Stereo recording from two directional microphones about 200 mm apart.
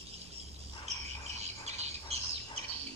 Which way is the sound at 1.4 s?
35° right (ahead or behind).